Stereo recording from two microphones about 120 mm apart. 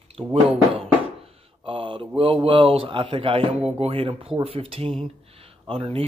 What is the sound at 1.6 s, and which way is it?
Speech, 45° right (ahead or behind).